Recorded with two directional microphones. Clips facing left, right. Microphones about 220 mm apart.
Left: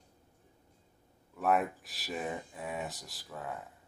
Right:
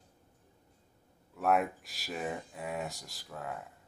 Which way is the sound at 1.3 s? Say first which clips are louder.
Right 1 dB; centre (ahead or behind).